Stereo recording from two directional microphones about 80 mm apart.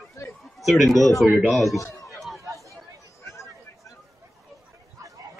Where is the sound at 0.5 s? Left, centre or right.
Centre.